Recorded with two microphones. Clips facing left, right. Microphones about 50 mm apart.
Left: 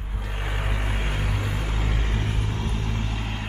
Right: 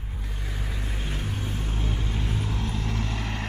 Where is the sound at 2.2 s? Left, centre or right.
Left.